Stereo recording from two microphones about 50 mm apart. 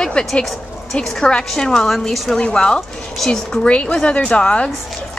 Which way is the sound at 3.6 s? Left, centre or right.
Left.